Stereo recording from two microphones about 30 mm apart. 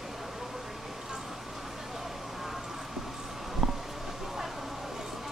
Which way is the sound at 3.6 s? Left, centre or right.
Centre.